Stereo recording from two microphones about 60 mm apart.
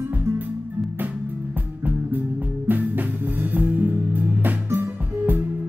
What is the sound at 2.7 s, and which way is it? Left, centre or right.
Music, right.